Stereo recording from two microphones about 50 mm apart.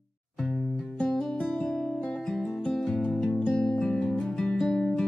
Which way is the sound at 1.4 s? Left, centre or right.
Left.